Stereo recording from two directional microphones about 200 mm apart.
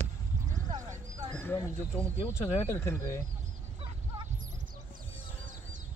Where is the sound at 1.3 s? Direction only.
5° left (ahead or behind).